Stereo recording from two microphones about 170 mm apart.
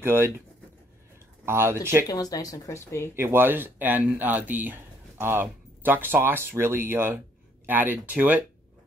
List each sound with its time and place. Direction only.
0.0 s speech: 15° right (ahead or behind)
1.4 s speech: 15° right (ahead or behind)
2.0 s speech: 20° left (ahead or behind)
3.2 s speech: 15° right (ahead or behind)